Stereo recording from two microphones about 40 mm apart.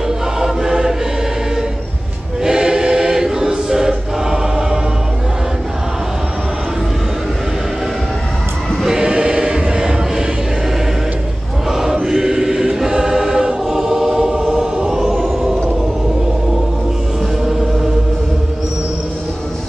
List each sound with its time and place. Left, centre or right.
0.4 s choir: centre
2.4 s choir: centre
9.0 s chant: right
11.7 s choir: centre
15.0 s a sound: centre
17.5 s music: centre